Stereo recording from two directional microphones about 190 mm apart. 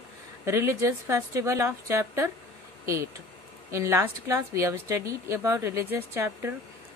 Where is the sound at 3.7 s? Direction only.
15° right (ahead or behind).